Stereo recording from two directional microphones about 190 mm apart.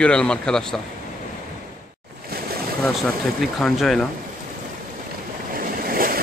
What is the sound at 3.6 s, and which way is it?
Speech, centre (ahead or behind).